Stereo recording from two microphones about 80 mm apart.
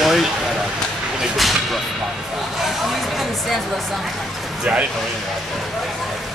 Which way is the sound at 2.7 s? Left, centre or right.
Centre.